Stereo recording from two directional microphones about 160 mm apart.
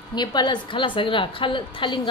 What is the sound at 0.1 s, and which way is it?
A woman's voice, 25° left (ahead or behind).